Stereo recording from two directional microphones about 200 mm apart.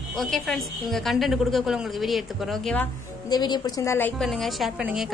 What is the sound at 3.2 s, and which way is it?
A woman's voice, 20° left (ahead or behind).